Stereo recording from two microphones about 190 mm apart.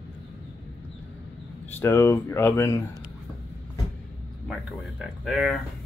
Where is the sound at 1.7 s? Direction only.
15° left (ahead or behind).